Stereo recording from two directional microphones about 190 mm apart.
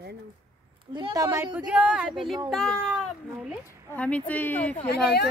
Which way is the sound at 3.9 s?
10° left (ahead or behind).